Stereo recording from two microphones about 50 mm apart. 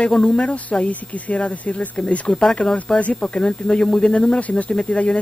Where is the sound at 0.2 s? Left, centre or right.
Left.